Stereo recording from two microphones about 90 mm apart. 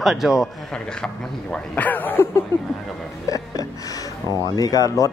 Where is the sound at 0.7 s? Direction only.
10° left (ahead or behind).